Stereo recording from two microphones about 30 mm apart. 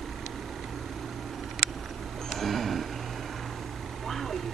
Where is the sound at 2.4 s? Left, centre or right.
Centre.